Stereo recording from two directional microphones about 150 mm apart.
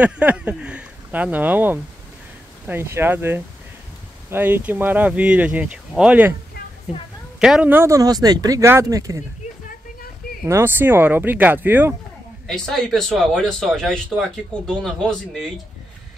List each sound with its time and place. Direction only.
0.0 s a sound: 10° right (ahead or behind)
2.6 s speech: 15° right (ahead or behind)
10.4 s speech: 15° right (ahead or behind)
12.4 s speech: centre (ahead or behind)